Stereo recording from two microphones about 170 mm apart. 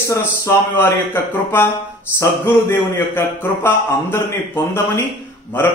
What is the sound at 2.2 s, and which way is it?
A man's voice, 15° left (ahead or behind).